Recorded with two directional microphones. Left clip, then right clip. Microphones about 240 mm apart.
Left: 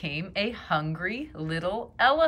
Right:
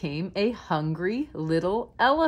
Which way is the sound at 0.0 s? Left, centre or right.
Centre.